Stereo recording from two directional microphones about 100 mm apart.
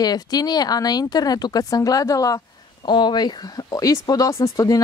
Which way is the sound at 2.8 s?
50° left (ahead or behind).